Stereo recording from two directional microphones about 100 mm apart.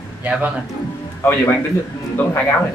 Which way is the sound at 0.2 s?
15° right (ahead or behind).